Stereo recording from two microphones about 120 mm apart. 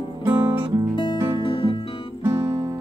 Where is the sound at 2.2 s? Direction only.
20° right (ahead or behind).